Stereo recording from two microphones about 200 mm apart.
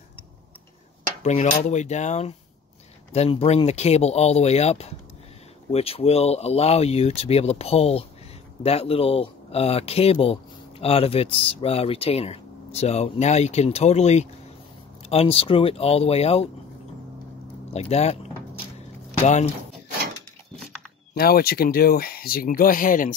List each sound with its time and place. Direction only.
1.2 s speech: 35° left (ahead or behind)
17.7 s speech: 30° left (ahead or behind)
19.2 s speech: 35° left (ahead or behind)
21.1 s speech: 50° left (ahead or behind)